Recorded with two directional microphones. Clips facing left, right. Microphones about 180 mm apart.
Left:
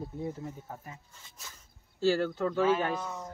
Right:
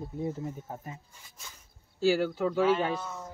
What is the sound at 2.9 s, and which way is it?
Speech, 15° left (ahead or behind).